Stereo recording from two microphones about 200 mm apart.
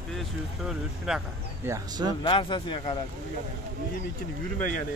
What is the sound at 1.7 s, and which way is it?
Speech, 20° right (ahead or behind).